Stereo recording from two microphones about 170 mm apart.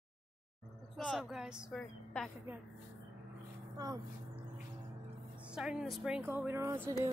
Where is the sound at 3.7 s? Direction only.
20° right (ahead or behind).